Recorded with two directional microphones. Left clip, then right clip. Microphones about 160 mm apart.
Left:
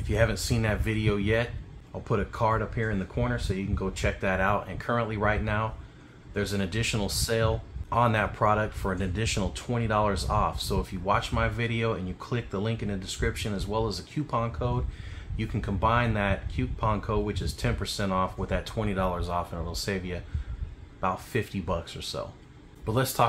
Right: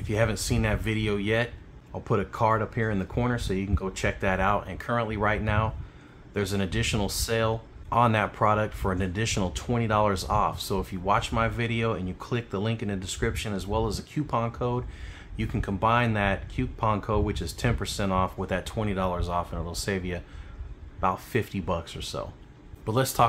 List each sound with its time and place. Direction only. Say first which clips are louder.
0.0 s speech: even; 30° right (ahead or behind)
2.0 s speech: right 2 dB; 35° right (ahead or behind)